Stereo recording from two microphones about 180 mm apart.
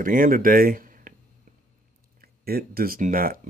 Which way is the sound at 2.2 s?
55° right (ahead or behind).